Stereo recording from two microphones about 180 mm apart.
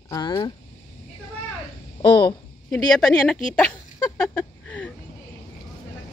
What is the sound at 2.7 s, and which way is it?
Speech, 5° left (ahead or behind).